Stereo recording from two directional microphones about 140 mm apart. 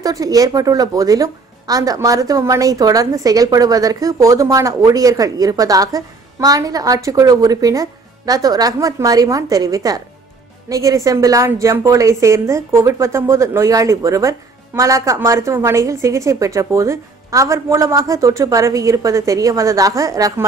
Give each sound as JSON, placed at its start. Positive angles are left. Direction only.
{"t": 0.0, "sound": "a woman's voice", "side_deg": -25}